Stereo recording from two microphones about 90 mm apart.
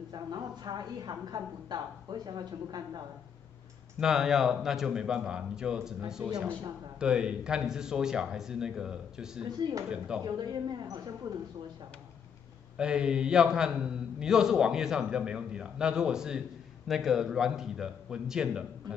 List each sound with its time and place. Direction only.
0.1 s a woman's voice: 50° right (ahead or behind)
4.0 s a man's voice: 5° right (ahead or behind)
9.6 s a woman's voice: 50° right (ahead or behind)
9.8 s a man's voice: 10° right (ahead or behind)
10.2 s a woman's voice: 50° right (ahead or behind)
12.7 s a man's voice: 10° right (ahead or behind)